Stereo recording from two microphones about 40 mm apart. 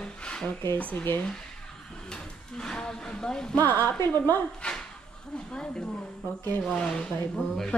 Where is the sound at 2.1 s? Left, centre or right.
Centre.